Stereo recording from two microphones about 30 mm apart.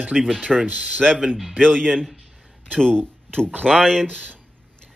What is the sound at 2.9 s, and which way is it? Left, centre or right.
A man's voice, left.